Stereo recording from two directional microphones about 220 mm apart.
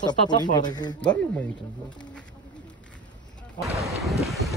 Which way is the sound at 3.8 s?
Centre (ahead or behind).